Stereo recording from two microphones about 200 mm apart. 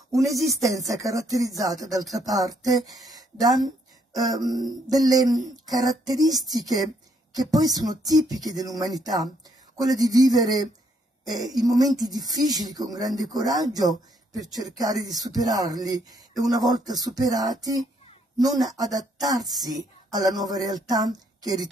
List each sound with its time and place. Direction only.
0.5 s speech: 15° right (ahead or behind)